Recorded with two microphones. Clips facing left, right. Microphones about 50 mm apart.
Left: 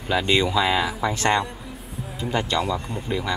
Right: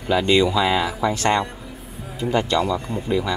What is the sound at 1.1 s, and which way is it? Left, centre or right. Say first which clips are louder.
Speech: even; left.